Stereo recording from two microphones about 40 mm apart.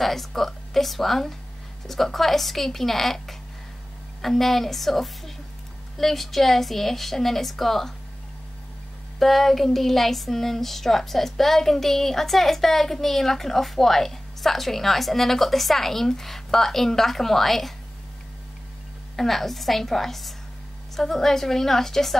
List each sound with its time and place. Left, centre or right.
0.0 s a woman's voice: centre
9.2 s speech: centre
19.1 s a woman's voice: centre